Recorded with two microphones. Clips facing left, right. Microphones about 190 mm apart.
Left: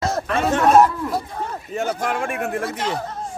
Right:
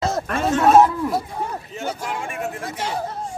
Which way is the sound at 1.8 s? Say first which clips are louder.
Left 6 dB; 60° left (ahead or behind).